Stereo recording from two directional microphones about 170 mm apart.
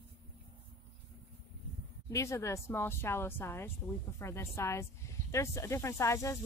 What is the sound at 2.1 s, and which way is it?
Speech, 15° left (ahead or behind).